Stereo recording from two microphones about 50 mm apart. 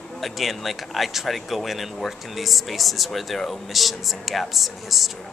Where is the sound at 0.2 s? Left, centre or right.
Centre.